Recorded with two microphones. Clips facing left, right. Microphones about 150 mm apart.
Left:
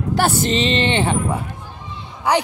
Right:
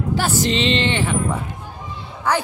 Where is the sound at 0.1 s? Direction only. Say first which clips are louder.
Left 3 dB; 60° left (ahead or behind).